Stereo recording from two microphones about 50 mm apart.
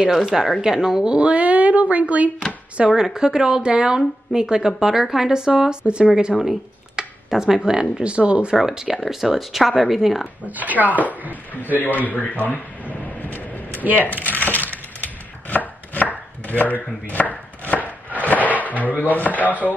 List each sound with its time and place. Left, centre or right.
0.0 s a woman's voice: centre
1.1 s speech: right
2.9 s a woman's voice: centre
8.1 s speech: right
8.5 s speech: centre
10.4 s speech: right
11.7 s a man's voice: left
13.0 s vehicle: left
13.9 s coin: left
15.5 s chopping: left
17.8 s a sound: left